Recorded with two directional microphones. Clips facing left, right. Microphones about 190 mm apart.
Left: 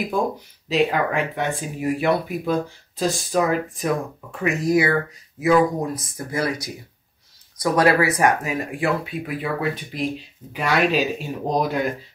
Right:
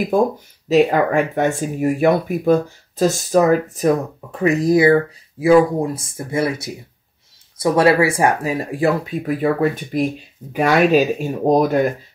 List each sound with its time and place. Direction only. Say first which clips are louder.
0.7 s speech: right 6 dB; 45° right (ahead or behind)